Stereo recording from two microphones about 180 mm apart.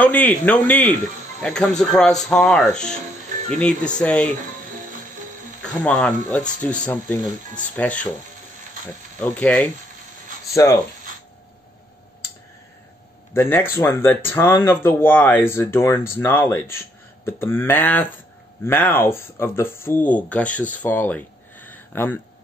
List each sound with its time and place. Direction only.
0.0 s speech: 10° left (ahead or behind)
5.8 s speech: 5° left (ahead or behind)
9.2 s speech: 10° left (ahead or behind)
13.3 s speech: 10° left (ahead or behind)
20.7 s a sound: 10° left (ahead or behind)